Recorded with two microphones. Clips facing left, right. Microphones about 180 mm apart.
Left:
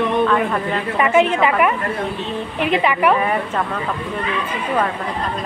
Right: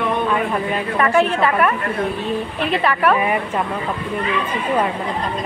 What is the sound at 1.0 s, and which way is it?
A woman's voice, 20° left (ahead or behind).